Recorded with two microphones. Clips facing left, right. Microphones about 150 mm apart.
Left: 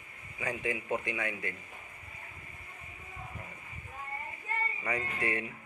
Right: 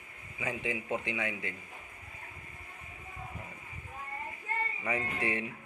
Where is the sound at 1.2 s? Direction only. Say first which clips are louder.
Even; 15° right (ahead or behind).